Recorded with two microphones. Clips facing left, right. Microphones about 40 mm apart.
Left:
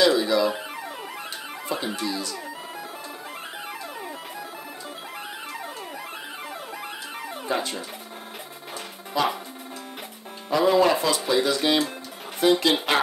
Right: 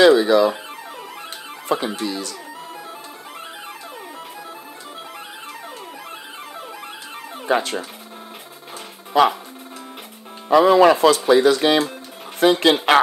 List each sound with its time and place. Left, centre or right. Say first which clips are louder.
0.0 s speech: right 7 dB; right
1.9 s speech: right 3 dB; right
7.4 s speech: right 7 dB; right
9.1 s speech: right 9 dB; right
10.5 s speech: right 7 dB; right